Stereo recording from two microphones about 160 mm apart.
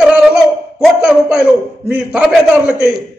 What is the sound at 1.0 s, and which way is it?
A man's voice, 5° right (ahead or behind).